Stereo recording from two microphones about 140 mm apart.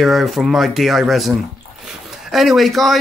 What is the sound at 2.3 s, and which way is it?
Speech, centre (ahead or behind).